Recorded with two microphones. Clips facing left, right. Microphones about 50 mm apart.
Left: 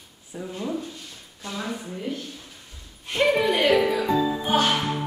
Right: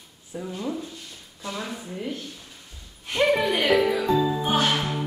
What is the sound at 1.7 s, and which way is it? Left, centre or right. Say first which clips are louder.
Speech: left 1 dB; centre.